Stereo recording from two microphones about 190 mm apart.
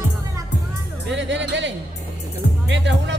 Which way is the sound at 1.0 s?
70° right (ahead or behind).